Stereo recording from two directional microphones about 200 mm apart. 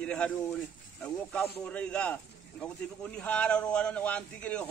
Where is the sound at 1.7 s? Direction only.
5° left (ahead or behind).